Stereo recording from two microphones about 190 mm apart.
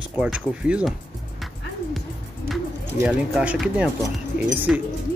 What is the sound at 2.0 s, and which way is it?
Music, centre (ahead or behind).